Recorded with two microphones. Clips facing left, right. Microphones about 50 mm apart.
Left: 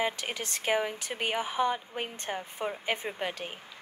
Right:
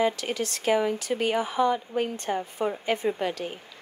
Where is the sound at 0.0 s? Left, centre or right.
Left.